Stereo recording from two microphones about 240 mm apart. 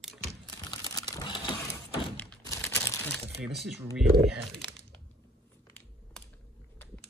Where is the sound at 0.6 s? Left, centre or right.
Centre.